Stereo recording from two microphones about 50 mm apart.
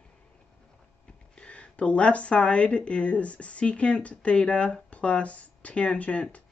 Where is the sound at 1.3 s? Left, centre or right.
Left.